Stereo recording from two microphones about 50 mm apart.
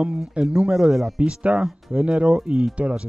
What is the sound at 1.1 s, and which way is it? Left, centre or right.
Speech, right.